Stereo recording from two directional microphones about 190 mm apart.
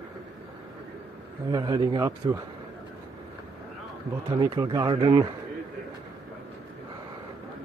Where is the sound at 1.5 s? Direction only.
20° right (ahead or behind).